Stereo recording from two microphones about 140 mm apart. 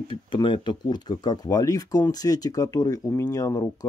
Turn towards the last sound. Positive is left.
turn(degrees=25)  # may be behind; listen again after turning